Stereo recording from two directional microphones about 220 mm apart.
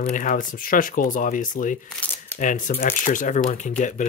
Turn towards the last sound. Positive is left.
turn(degrees=35)  # may be behind; listen again after turning